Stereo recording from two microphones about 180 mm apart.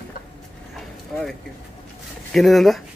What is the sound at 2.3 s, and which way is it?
Speech, centre (ahead or behind).